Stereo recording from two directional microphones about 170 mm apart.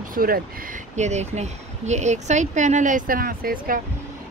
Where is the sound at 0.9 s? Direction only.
40° right (ahead or behind); by 3.8 s 60° right (ahead or behind).